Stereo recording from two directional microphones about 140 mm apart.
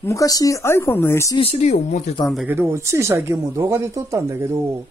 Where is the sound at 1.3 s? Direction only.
45° left (ahead or behind).